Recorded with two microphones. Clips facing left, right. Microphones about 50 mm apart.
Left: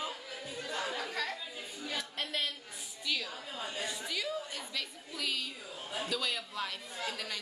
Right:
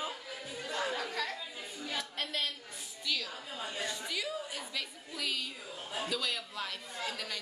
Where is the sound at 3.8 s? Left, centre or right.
Centre.